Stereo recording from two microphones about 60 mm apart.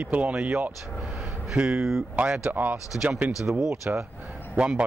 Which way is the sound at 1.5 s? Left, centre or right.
Centre.